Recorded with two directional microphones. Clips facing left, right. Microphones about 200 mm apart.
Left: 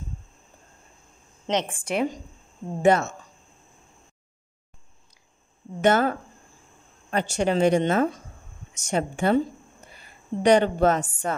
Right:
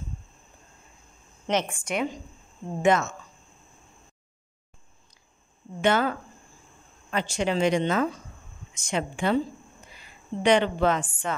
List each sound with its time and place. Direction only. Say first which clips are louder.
1.5 s a woman's voice: even; 20° left (ahead or behind)
1.9 s a woman's voice: left 3 dB; 35° left (ahead or behind)
5.8 s a woman's voice: left 3 dB; 45° left (ahead or behind)